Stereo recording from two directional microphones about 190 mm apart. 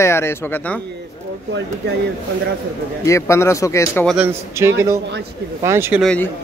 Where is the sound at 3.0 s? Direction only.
15° left (ahead or behind).